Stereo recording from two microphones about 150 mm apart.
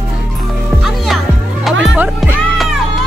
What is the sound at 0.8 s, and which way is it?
Music, centre (ahead or behind).